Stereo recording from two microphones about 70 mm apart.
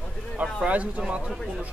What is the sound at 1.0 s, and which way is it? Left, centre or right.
Speech, centre.